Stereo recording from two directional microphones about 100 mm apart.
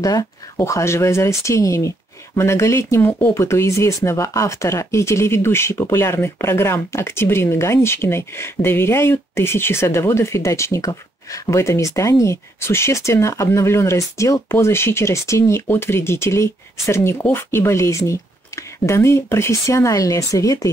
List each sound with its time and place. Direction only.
0.0 s speech: 40° left (ahead or behind)
0.6 s speech: 30° left (ahead or behind)